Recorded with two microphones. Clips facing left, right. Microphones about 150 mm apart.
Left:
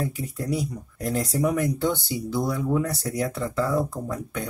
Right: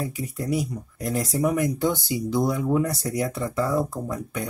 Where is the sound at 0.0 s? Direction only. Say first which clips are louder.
Even; 10° right (ahead or behind).